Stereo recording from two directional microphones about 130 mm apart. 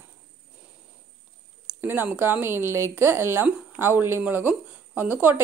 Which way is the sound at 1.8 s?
15° right (ahead or behind).